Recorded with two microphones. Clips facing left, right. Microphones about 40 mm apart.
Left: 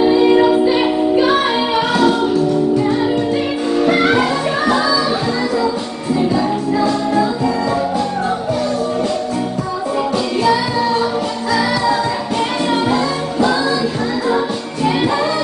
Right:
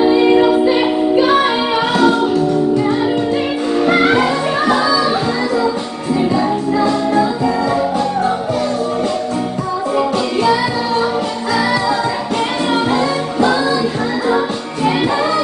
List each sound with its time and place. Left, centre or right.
0.0 s music: centre
4.7 s music: centre
11.5 s music: centre
14.9 s music: centre